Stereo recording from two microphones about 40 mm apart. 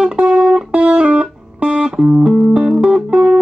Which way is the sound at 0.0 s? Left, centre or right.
Right.